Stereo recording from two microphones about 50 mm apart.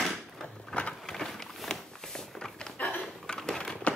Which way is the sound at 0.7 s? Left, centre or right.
Left.